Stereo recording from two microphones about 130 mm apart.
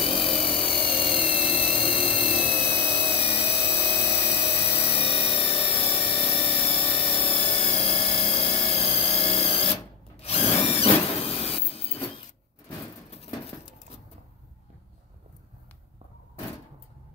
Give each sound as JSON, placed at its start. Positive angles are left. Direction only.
{"t": 0.0, "sound": "helicopter", "side_deg": 45}
{"t": 10.2, "sound": "tools", "side_deg": 50}
{"t": 11.6, "sound": "printer", "side_deg": 50}